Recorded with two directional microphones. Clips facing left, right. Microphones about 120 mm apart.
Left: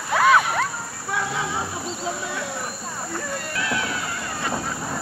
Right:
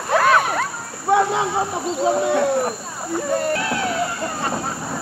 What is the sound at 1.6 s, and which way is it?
Speech, 50° right (ahead or behind).